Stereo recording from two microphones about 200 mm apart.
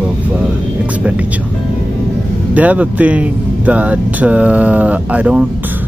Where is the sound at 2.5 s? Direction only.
5° right (ahead or behind).